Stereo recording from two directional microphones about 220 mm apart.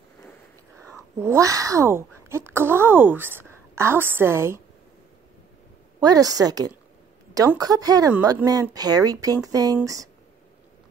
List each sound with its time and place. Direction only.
1.2 s speech: 15° right (ahead or behind)
5.9 s speech: 15° right (ahead or behind)